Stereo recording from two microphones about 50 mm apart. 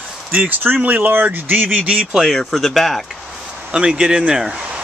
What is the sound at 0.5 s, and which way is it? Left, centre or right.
Speech, right.